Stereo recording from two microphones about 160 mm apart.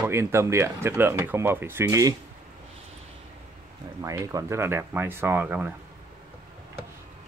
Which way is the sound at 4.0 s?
20° right (ahead or behind).